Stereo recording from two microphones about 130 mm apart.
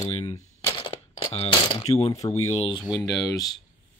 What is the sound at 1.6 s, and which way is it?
Speech, 45° left (ahead or behind).